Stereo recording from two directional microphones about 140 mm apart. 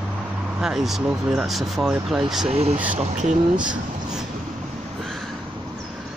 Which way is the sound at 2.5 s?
50° right (ahead or behind).